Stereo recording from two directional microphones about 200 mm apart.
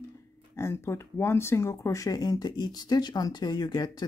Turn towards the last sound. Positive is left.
turn(degrees=20)  # may be behind; listen again after turning